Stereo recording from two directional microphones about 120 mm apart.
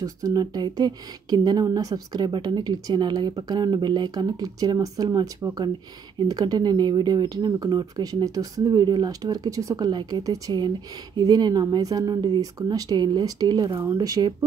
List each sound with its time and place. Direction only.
0.0 s speech: 30° right (ahead or behind)